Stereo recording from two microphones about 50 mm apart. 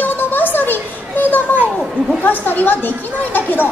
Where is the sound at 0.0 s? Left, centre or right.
Left.